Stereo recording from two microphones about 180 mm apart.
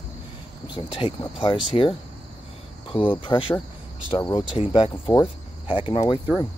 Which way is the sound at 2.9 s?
25° left (ahead or behind).